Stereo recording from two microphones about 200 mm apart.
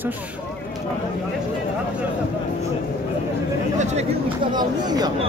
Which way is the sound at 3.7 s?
35° right (ahead or behind).